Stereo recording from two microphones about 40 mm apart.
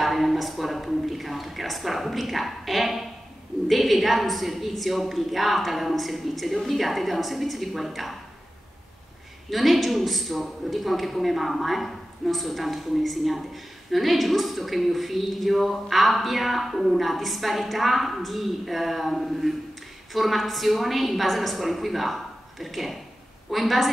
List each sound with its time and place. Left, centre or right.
0.0 s a man's voice: centre
9.5 s a man's voice: centre